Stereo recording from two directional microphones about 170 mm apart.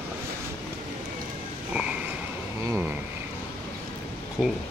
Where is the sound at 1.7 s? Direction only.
5° right (ahead or behind).